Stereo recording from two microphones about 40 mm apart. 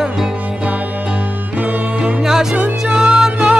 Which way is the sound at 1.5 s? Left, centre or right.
Right.